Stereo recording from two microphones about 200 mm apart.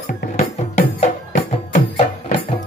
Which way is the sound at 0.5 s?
35° left (ahead or behind).